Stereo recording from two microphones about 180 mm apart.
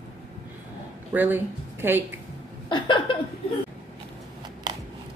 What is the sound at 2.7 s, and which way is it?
Speech, 25° left (ahead or behind).